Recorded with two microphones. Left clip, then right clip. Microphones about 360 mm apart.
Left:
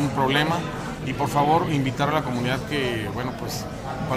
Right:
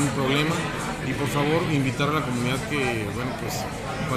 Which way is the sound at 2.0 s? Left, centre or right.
Left.